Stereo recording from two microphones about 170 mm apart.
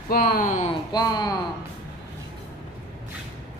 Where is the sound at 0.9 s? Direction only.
25° left (ahead or behind).